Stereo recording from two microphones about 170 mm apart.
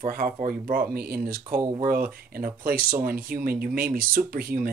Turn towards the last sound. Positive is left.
turn(degrees=-55)  # may be behind; listen again after turning